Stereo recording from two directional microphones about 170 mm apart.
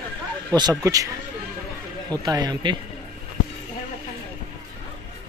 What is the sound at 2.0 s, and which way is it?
Speech, 20° right (ahead or behind).